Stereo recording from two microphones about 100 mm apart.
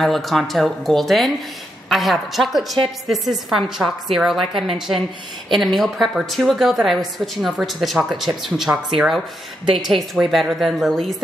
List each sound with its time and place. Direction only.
0.0 s a woman's voice: centre (ahead or behind)
10.2 s a woman's voice: centre (ahead or behind)